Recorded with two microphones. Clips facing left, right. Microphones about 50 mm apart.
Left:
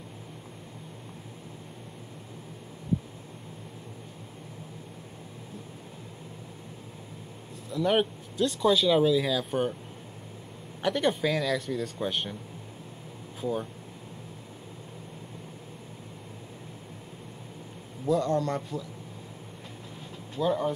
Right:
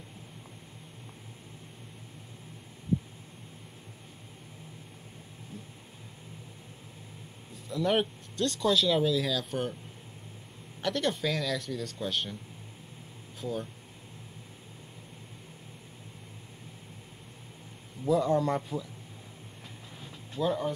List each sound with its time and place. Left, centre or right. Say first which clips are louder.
7.7 s speech: left 2 dB; centre
10.8 s speech: left 4 dB; centre
13.4 s speech: left 4 dB; centre
18.0 s speech: even; centre
20.3 s speech: left 3 dB; centre